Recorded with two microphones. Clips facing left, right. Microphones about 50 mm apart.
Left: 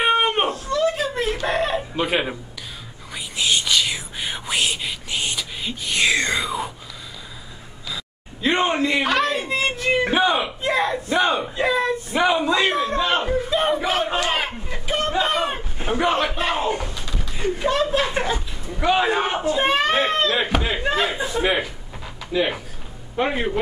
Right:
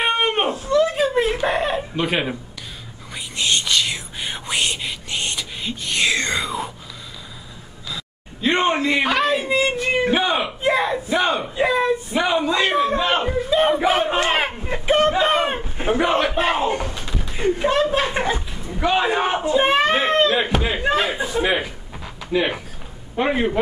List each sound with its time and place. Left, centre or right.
0.0 s a sound: centre
0.5 s chuckle: centre
3.3 s whispering: centre
7.9 s a sound: centre
8.6 s a man's voice: centre
13.7 s a man's voice: centre
15.9 s a man's voice: centre
18.7 s speech: centre
19.4 s a man's voice: centre
22.3 s a man's voice: centre